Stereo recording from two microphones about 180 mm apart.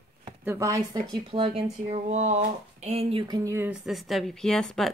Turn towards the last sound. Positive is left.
turn(degrees=5)  # may be behind; listen again after turning